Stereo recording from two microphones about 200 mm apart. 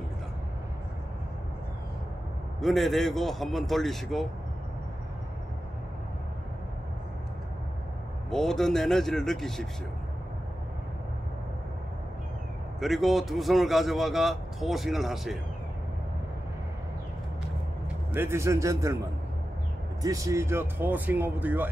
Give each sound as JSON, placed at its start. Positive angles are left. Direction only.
{"t": 2.6, "sound": "a man's voice", "side_deg": 0}
{"t": 8.3, "sound": "a man's voice", "side_deg": 0}
{"t": 12.8, "sound": "a man's voice", "side_deg": 0}
{"t": 18.1, "sound": "speech", "side_deg": -10}
{"t": 20.0, "sound": "speech", "side_deg": -15}